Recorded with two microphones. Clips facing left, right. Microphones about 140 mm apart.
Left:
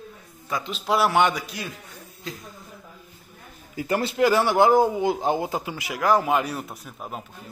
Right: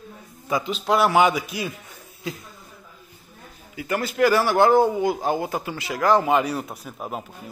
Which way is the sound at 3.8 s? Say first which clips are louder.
Even; 30° left (ahead or behind).